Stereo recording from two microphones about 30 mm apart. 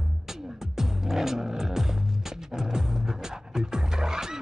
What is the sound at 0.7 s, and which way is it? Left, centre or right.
Music, centre.